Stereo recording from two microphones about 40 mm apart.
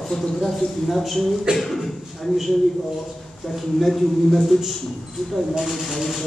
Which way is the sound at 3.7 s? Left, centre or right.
Centre.